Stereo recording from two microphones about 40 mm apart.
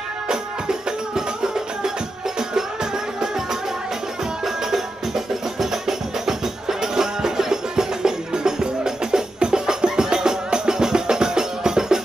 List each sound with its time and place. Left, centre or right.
0.3 s music: centre
4.5 s music: centre